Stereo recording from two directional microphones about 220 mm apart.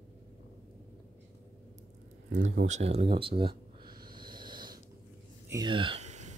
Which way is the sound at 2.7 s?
30° right (ahead or behind).